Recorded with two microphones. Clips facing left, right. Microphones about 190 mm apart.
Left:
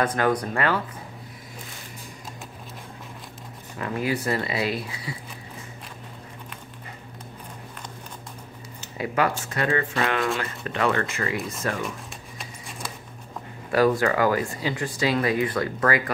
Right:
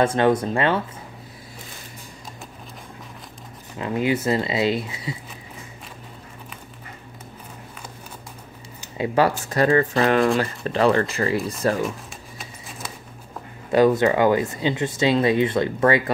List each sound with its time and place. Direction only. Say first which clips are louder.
0.0 s speech: right 5 dB; 25° right (ahead or behind)
3.7 s speech: right 4 dB; 20° right (ahead or behind)
8.9 s speech: right 5 dB; 25° right (ahead or behind)
12.4 s a sound: even; centre (ahead or behind)
13.7 s speech: right 4 dB; 20° right (ahead or behind)